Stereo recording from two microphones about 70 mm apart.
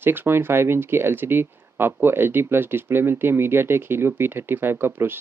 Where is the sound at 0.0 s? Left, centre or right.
Right.